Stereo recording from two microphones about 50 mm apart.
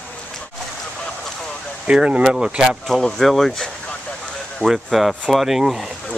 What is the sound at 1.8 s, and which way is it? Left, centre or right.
Speech, right.